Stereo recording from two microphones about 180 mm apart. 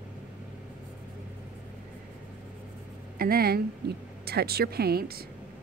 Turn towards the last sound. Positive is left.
turn(degrees=-60)  # may be behind; listen again after turning